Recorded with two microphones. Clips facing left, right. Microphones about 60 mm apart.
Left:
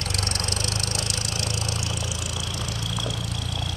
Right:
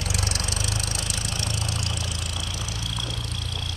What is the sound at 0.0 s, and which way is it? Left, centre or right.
Vehicle, centre.